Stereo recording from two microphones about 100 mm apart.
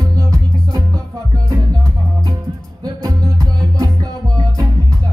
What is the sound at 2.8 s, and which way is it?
Music, 40° right (ahead or behind).